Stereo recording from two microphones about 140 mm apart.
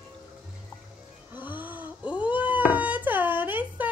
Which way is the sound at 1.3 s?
15° right (ahead or behind).